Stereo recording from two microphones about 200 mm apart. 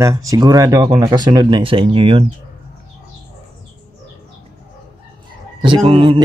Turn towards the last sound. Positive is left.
turn(degrees=-25)  # may be behind; listen again after turning